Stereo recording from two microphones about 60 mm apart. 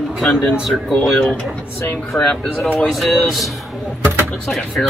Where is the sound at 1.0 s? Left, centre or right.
Centre.